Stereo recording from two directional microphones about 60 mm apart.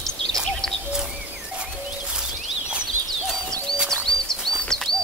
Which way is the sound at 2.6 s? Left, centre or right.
Centre.